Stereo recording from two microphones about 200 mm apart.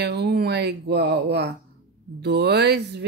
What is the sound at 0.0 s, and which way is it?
Speech, 55° right (ahead or behind).